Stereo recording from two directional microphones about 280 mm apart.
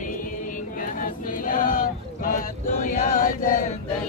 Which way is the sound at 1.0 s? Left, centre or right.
Left.